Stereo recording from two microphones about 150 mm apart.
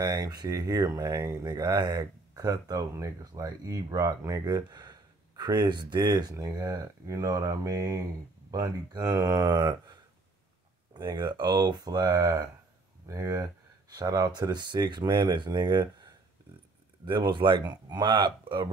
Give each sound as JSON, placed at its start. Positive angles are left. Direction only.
{"t": 0.0, "sound": "speech", "side_deg": -25}